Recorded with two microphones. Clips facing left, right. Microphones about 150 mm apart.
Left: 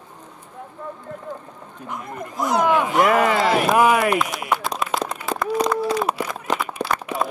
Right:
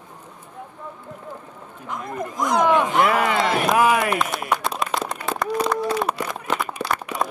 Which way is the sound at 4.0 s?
Centre (ahead or behind).